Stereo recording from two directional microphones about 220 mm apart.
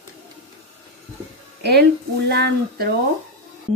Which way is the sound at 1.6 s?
50° right (ahead or behind).